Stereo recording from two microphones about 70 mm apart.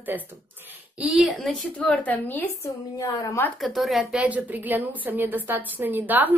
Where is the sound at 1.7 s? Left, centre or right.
Centre.